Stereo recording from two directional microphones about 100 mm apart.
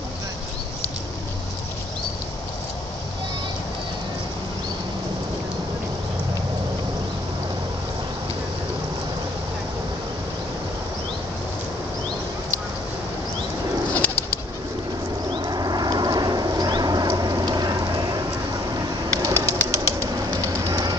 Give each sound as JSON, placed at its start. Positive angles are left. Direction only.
{"t": 13.9, "sound": "bird flight", "side_deg": 20}
{"t": 15.3, "sound": "a sound", "side_deg": -40}
{"t": 19.3, "sound": "bird", "side_deg": 25}
{"t": 19.7, "sound": "bird", "side_deg": -30}